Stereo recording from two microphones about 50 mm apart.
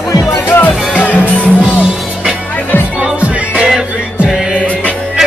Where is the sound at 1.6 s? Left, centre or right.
Right.